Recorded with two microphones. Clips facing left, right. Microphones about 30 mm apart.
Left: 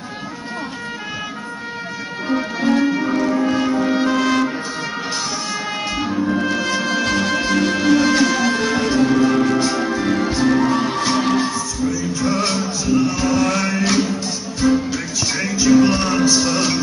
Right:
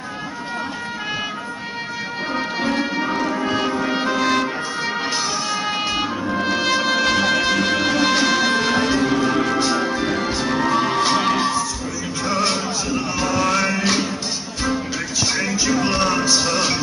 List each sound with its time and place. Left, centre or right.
2.7 s music: right
3.1 s music: centre
4.8 s music: right
5.7 s music: centre
6.4 s music: right
7.1 s music: right
10.9 s music: right
11.3 s music: right
13.1 s music: centre
15.5 s music: right
16.0 s music: centre